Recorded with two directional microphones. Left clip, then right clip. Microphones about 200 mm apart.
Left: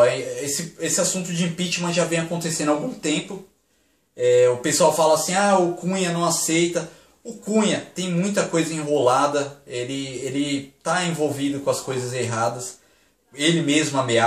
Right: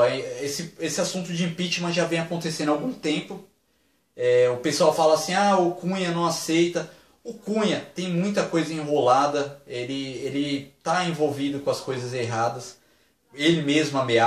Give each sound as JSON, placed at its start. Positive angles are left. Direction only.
{"t": 0.0, "sound": "speech", "side_deg": 5}
{"t": 4.2, "sound": "speech", "side_deg": 5}